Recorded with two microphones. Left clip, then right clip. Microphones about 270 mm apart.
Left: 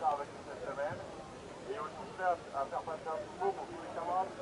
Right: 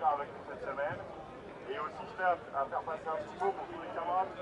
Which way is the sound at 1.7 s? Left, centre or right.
Centre.